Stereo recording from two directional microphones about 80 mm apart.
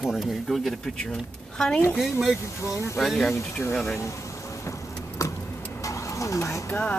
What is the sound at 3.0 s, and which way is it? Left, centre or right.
Speech, centre.